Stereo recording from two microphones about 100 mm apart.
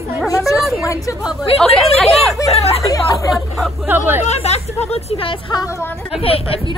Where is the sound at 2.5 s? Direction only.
90° left.